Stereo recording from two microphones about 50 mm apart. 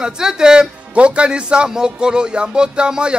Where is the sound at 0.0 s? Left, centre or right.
Centre.